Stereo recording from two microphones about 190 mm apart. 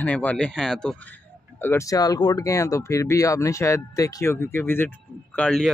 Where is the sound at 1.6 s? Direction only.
15° left (ahead or behind).